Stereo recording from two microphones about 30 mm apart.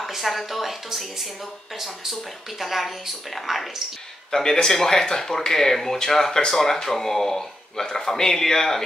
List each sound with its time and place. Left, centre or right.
0.1 s a woman's voice: centre
4.3 s speech: left